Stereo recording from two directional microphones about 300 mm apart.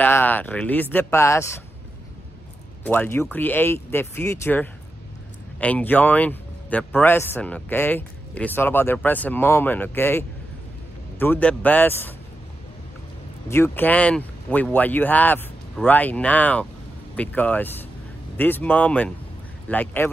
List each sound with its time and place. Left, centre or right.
0.0 s speech: centre
2.8 s speech: centre
13.5 s speech: centre